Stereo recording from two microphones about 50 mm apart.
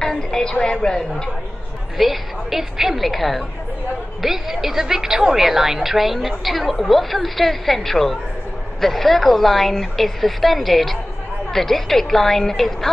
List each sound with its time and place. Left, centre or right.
0.0 s a woman's voice: centre
2.0 s a woman's voice: centre